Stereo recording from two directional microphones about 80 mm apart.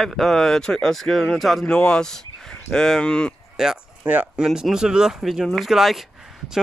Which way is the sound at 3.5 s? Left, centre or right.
Centre.